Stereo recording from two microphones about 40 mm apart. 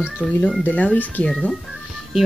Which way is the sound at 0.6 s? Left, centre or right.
Left.